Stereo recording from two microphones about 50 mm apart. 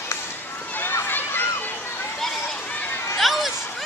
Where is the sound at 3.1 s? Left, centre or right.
Centre.